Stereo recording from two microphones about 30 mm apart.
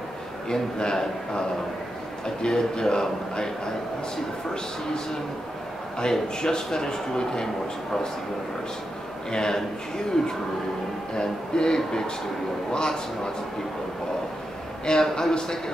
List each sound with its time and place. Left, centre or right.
0.5 s speech: left
2.4 s speech: left
6.2 s speech: left
9.3 s speech: left
14.9 s speech: left